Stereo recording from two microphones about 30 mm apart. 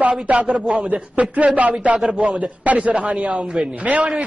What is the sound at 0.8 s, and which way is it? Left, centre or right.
A man's voice, right.